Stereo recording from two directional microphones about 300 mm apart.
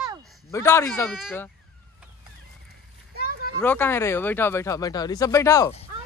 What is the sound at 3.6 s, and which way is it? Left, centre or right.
Speech, centre.